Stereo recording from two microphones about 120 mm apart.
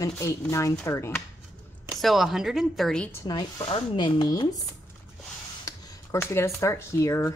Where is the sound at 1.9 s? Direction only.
Centre (ahead or behind).